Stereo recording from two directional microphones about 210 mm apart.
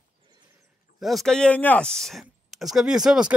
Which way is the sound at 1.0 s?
Centre (ahead or behind).